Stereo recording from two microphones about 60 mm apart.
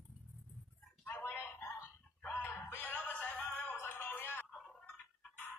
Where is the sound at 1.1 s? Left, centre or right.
Left.